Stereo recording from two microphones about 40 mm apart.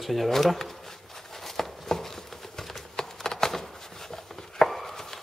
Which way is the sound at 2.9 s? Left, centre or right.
Centre.